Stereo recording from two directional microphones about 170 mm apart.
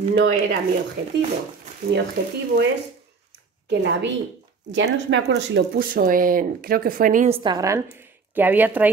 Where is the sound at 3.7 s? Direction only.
90° right.